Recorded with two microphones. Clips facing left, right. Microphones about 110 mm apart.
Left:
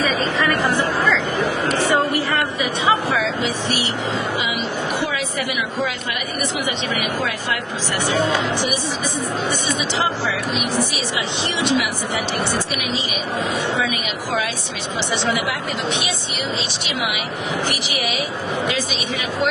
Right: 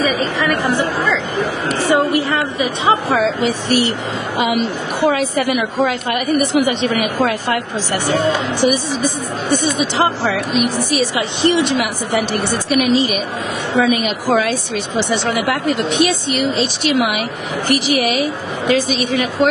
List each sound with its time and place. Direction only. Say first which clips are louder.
1.0 s a sound: right 1 dB; 15° right (ahead or behind)
3.2 s a woman's voice: right 5 dB; 45° right (ahead or behind)
10.6 s a woman's voice: right 5 dB; 50° right (ahead or behind)